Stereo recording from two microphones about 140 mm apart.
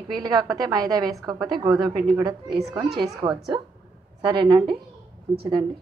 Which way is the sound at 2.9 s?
30° right (ahead or behind).